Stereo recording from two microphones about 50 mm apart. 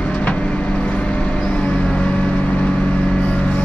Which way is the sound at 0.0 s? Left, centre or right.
Left.